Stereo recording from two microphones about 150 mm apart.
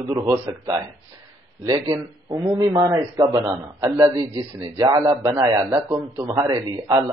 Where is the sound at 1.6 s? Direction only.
25° right (ahead or behind).